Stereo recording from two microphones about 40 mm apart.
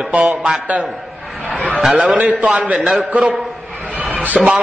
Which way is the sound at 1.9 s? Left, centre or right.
Right.